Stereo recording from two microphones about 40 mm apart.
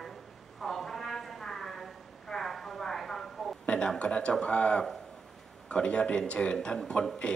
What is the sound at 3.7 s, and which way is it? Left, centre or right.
Speech, left.